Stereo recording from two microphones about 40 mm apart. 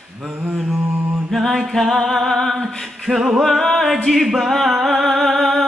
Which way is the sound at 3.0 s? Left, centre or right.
Centre.